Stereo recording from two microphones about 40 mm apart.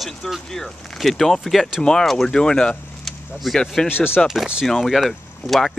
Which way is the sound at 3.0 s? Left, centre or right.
Centre.